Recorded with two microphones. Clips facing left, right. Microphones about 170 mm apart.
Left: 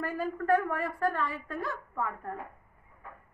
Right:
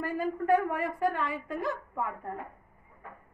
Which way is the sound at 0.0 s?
10° right (ahead or behind).